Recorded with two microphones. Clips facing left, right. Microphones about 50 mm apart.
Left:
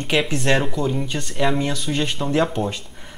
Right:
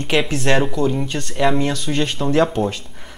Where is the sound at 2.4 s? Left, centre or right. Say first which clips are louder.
Right 5 dB; right.